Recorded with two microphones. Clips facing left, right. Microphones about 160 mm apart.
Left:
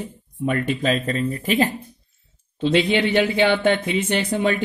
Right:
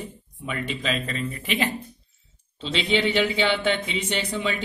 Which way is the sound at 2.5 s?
55° left (ahead or behind).